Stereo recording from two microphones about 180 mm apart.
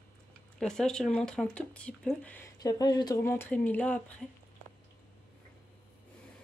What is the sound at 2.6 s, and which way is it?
Speech, 20° left (ahead or behind).